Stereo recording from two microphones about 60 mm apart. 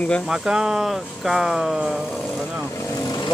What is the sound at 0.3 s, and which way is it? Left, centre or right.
Speech, centre.